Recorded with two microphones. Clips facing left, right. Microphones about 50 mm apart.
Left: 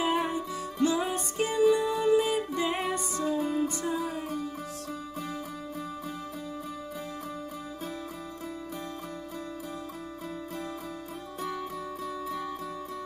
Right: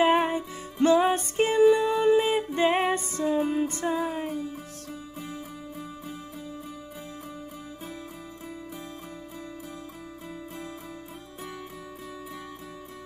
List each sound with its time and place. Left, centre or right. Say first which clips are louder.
0.0 s music: right 6 dB; right